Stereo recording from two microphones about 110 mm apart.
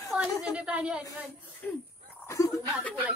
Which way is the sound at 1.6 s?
10° left (ahead or behind).